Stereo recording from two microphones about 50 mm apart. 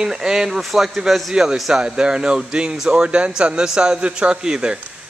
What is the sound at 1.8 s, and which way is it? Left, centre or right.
Speech, centre.